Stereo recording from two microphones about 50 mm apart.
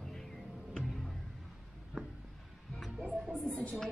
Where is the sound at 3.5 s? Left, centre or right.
Centre.